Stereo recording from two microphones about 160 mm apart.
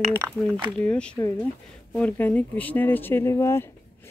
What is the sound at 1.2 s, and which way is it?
Speech, 20° left (ahead or behind).